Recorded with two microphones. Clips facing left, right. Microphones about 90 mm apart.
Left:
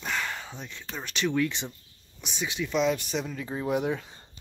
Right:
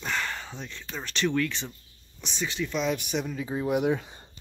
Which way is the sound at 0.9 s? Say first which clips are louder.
Even; 5° left (ahead or behind).